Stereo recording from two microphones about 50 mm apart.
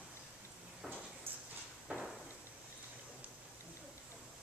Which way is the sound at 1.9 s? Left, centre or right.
Right.